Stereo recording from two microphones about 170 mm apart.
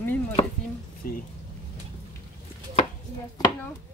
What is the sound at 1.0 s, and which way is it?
Speech, 60° left (ahead or behind).